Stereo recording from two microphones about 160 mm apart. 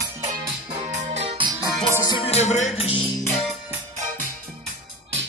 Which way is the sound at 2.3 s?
45° left (ahead or behind).